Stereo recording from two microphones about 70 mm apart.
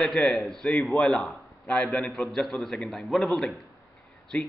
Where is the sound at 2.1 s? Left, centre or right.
Centre.